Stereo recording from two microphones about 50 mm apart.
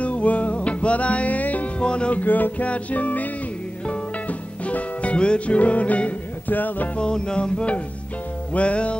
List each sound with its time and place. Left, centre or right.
0.0 s music: left
1.8 s music: left
2.2 s music: left
2.6 s music: left
7.0 s music: centre